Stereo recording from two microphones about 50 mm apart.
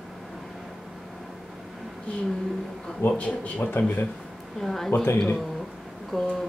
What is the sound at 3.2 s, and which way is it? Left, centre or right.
Speech, left.